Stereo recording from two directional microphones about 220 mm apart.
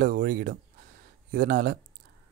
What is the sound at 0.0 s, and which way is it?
Speech, 40° right (ahead or behind).